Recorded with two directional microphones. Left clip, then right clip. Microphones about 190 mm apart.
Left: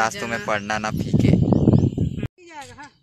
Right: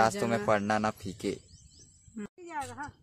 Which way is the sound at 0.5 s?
5° left (ahead or behind).